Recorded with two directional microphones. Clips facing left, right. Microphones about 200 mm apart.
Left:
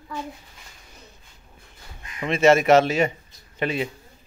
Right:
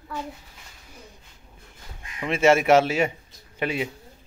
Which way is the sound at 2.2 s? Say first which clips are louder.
Left 2 dB; 10° right (ahead or behind).